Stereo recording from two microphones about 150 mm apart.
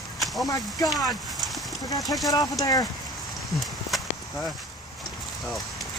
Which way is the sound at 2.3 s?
25° left (ahead or behind).